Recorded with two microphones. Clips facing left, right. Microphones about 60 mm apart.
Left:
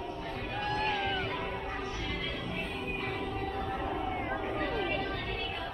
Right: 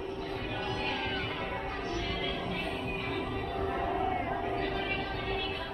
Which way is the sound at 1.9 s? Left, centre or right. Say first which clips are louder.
Right 3 dB; right.